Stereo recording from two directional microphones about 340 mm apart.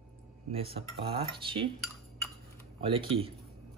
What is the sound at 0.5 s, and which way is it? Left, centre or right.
Speech, centre.